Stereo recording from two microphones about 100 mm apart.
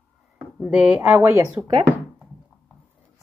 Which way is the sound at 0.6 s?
15° right (ahead or behind).